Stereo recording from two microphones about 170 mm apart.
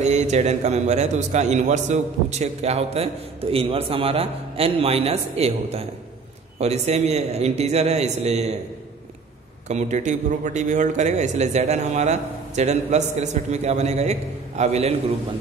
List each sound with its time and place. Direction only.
0.0 s a man's voice: 40° right (ahead or behind)
9.7 s a man's voice: 45° right (ahead or behind)